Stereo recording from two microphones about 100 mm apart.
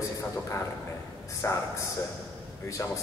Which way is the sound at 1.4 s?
30° left (ahead or behind).